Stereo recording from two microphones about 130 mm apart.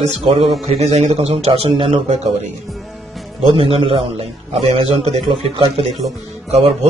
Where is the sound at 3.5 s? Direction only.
45° right (ahead or behind).